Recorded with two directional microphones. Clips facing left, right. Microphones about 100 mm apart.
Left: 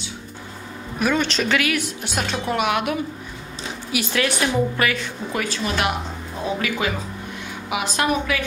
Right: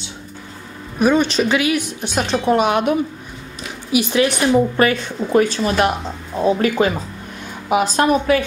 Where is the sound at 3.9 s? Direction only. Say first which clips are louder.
Right 7 dB; 20° right (ahead or behind).